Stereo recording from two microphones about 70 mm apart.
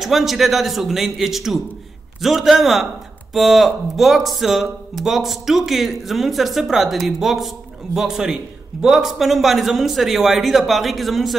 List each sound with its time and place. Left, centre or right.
0.0 s speech: centre